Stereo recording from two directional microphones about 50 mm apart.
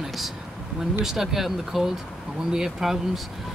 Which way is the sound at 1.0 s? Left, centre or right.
Centre.